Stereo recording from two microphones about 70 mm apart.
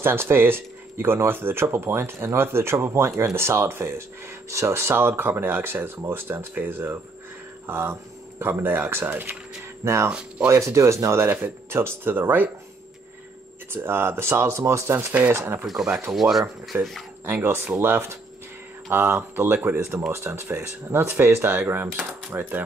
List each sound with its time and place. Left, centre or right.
0.0 s speech: right
9.8 s speech: right
13.7 s speech: right
15.6 s speech: centre
17.2 s speech: right